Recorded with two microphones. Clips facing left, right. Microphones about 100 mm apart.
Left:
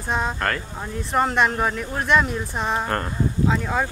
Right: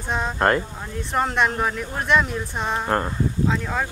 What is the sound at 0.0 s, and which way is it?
Speech, centre (ahead or behind).